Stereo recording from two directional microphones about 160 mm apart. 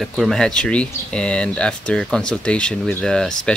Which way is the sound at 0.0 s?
Centre (ahead or behind).